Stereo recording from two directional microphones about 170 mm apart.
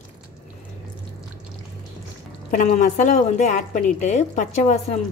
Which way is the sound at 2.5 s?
50° left (ahead or behind).